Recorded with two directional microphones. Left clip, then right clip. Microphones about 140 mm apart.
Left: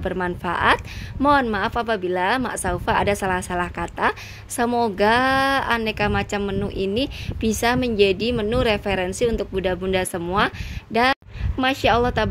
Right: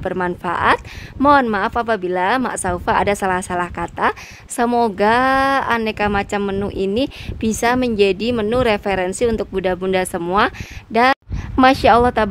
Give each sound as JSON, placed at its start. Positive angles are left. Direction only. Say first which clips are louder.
{"t": 0.0, "sound": "a woman's voice", "louder": "right 4 dB", "side_deg": -25}